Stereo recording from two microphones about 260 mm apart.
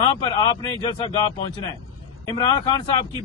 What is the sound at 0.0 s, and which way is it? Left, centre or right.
A man's voice, centre.